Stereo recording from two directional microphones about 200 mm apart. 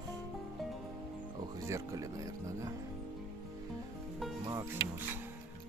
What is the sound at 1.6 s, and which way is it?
Speech, 15° right (ahead or behind).